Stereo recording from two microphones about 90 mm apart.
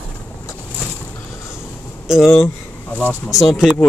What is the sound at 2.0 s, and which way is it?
Speech, 5° right (ahead or behind).